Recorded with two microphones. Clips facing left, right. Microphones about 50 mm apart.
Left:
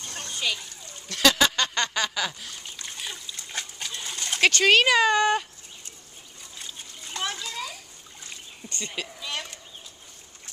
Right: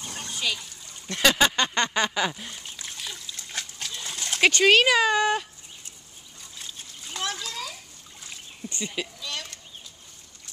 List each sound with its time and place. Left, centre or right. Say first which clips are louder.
0.0 s splash: even; centre
1.0 s a sound: even; centre
2.9 s trickle: left 1 dB; centre
3.3 s dog: left 1 dB; centre
4.4 s speech: right 1 dB; centre
4.6 s speech: even; centre
6.6 s splash: even; centre
8.6 s speech: right 2 dB; centre
9.2 s chicken: left 1 dB; centre